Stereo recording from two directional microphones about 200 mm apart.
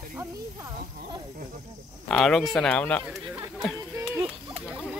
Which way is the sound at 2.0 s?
5° left (ahead or behind).